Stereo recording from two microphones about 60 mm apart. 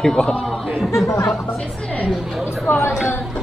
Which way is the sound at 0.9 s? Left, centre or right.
Left.